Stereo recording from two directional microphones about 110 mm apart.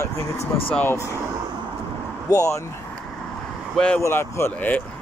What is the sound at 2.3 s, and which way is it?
Speech, 30° left (ahead or behind).